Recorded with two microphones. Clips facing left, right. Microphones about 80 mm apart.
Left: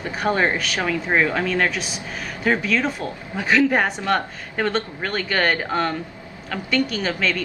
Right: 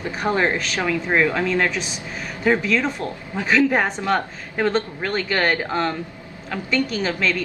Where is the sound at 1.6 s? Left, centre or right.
Centre.